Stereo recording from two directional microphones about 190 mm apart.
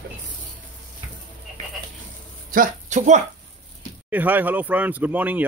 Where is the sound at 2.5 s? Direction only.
45° right (ahead or behind).